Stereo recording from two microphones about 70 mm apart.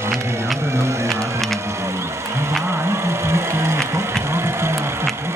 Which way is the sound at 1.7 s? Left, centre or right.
Right.